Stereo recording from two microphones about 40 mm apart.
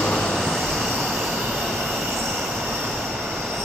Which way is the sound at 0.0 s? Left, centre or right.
Centre.